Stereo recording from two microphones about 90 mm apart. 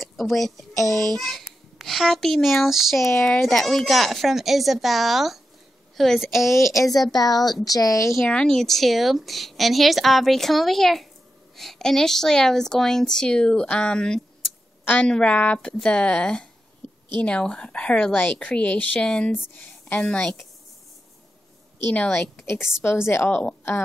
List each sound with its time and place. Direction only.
0.0 s a child's voice: centre (ahead or behind)
6.5 s a woman's voice: 35° left (ahead or behind)
8.3 s a woman's voice: 5° left (ahead or behind)
22.1 s a woman's voice: 30° left (ahead or behind)